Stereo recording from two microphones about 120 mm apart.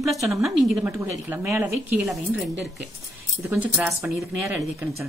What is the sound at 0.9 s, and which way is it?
Speech, 20° right (ahead or behind).